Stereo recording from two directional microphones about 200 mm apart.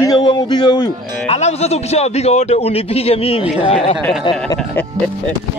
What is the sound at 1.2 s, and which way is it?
A man's voice, 30° left (ahead or behind).